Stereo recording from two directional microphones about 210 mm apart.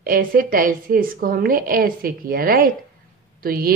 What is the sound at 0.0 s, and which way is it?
Speech, 45° right (ahead or behind).